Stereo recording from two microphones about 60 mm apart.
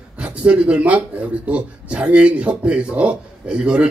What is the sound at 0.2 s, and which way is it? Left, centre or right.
A man's voice, centre.